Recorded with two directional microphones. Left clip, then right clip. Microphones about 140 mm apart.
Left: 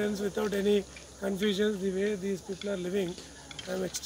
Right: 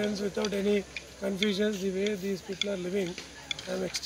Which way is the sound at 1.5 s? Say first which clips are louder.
Even; centre (ahead or behind).